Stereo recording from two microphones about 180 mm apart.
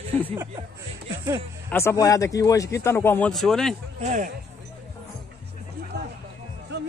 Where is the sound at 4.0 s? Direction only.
40° right (ahead or behind).